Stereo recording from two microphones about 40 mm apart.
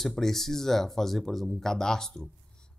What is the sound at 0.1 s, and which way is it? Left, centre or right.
A man's voice, centre.